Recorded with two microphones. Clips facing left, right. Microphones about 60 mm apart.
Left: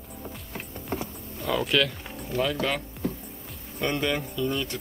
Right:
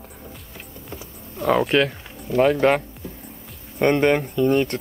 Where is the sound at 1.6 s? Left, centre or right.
Right.